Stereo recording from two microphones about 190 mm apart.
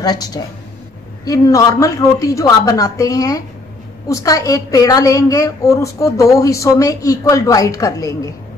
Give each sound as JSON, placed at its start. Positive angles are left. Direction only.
{"t": 0.0, "sound": "a woman's voice", "side_deg": 20}